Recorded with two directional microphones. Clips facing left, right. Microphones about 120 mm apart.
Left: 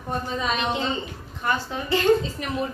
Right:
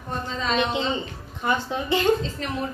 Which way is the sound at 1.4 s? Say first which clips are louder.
Right 2 dB; 20° right (ahead or behind).